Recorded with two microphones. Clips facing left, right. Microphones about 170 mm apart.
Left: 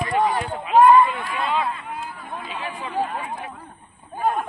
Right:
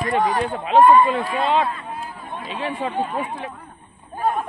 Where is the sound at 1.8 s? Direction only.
25° right (ahead or behind).